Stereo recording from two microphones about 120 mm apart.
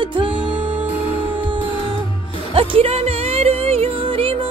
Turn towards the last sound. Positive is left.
turn(degrees=-50)  # may be behind; listen again after turning